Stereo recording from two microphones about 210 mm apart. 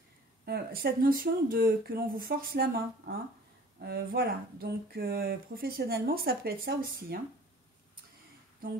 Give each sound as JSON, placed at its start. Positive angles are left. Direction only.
{"t": 0.5, "sound": "speech", "side_deg": -50}